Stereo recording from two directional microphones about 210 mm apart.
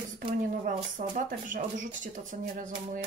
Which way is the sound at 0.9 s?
40° right (ahead or behind).